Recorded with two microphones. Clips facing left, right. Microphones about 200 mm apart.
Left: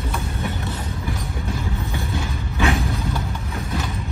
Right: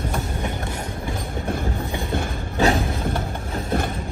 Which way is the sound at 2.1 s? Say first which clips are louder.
Right 2 dB; 55° right (ahead or behind).